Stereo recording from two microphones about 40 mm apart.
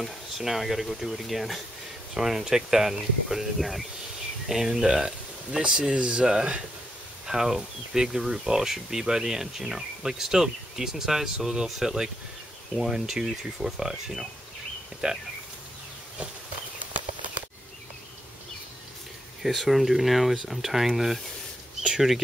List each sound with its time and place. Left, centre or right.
0.4 s speech: centre
4.5 s speech: centre
7.2 s speech: centre
19.4 s speech: centre